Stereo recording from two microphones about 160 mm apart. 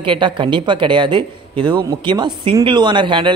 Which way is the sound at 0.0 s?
30° right (ahead or behind).